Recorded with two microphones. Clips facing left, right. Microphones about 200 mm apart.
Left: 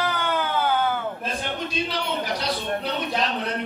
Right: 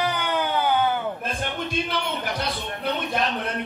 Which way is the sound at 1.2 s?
55° right (ahead or behind).